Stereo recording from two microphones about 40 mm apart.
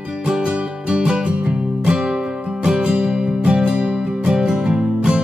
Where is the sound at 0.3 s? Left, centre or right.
Right.